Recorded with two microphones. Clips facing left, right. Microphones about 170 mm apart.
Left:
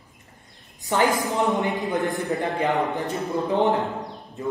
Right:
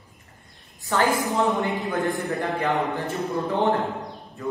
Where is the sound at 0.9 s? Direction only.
15° left (ahead or behind).